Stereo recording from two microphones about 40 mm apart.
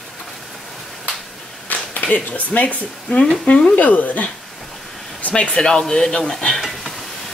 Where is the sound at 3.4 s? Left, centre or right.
Left.